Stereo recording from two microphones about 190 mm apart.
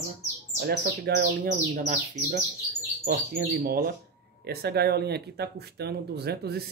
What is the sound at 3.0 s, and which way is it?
Speech, 50° right (ahead or behind).